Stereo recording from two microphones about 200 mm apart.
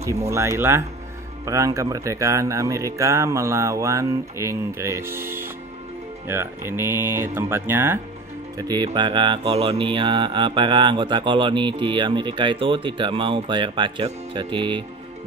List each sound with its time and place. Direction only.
0.3 s speech: 15° right (ahead or behind)
8.5 s mantra: 20° right (ahead or behind)